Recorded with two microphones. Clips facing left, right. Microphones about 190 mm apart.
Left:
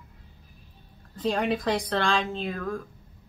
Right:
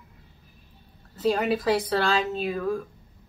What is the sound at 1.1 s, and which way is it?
Speech, 5° right (ahead or behind).